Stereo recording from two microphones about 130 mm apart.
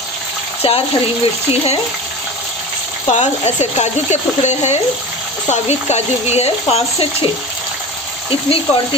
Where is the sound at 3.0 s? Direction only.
60° left (ahead or behind).